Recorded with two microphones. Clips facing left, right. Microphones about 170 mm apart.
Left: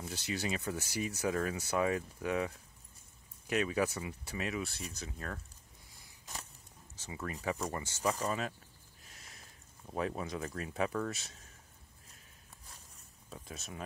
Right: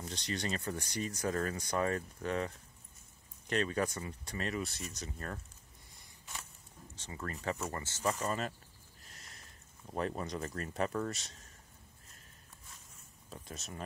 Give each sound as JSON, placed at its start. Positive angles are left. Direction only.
{"t": 0.0, "sound": "speech", "side_deg": 5}
{"t": 6.3, "sound": "a sound", "side_deg": 40}
{"t": 7.0, "sound": "speech", "side_deg": 10}
{"t": 9.0, "sound": "speech", "side_deg": 0}
{"t": 13.3, "sound": "speech", "side_deg": 0}